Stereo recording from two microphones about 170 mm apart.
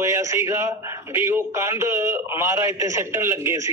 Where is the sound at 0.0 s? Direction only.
15° right (ahead or behind).